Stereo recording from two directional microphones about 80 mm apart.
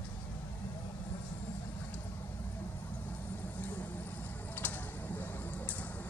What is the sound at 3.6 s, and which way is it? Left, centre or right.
Vehicle, left.